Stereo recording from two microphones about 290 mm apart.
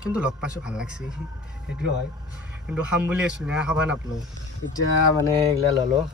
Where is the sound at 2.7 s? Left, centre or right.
Centre.